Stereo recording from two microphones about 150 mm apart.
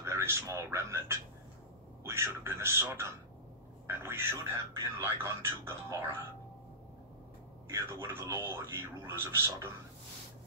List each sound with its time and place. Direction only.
0.0 s a man's voice: 15° right (ahead or behind)
7.7 s speech: 15° right (ahead or behind)